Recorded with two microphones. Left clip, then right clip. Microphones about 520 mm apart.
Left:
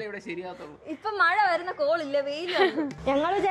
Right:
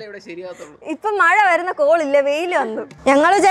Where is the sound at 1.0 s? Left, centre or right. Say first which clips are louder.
Right 9 dB; right.